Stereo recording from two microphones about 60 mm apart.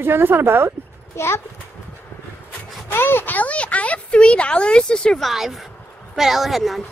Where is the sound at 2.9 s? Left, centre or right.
Left; by 5.2 s centre.